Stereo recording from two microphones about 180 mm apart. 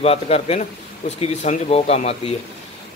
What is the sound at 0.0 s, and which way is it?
Speech, 35° left (ahead or behind).